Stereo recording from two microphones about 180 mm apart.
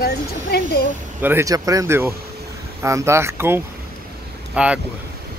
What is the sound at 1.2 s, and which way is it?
Speech, 10° right (ahead or behind).